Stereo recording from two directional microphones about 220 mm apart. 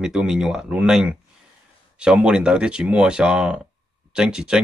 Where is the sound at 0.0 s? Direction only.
5° right (ahead or behind).